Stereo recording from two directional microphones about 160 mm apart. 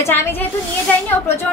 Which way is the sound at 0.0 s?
15° left (ahead or behind).